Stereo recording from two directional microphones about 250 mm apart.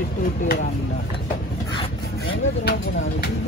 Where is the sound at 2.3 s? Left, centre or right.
Left.